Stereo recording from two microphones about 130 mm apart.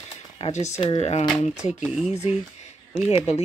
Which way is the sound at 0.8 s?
50° left (ahead or behind).